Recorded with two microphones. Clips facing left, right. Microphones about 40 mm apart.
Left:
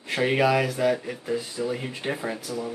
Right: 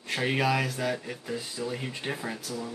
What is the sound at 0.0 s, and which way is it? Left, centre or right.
Speech, centre.